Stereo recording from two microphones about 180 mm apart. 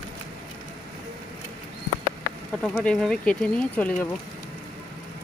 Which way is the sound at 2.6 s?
5° left (ahead or behind).